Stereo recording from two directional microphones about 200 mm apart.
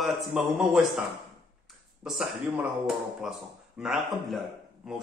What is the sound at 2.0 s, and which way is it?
Speech, 5° right (ahead or behind).